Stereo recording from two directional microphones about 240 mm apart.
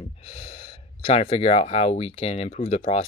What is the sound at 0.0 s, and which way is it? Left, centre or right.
Speech, left.